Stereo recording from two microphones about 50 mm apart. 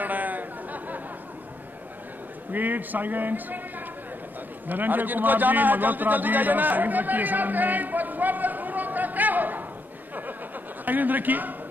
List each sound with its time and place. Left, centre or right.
0.0 s chatter: right
2.5 s a man's voice: right
4.6 s a man's voice: right
10.9 s a man's voice: right